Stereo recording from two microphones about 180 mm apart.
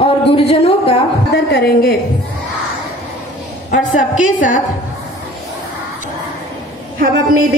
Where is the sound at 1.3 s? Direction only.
60° left (ahead or behind).